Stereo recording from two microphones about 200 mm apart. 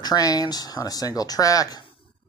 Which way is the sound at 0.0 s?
20° left (ahead or behind).